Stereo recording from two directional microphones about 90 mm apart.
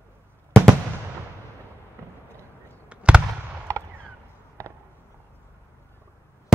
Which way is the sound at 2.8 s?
10° right (ahead or behind).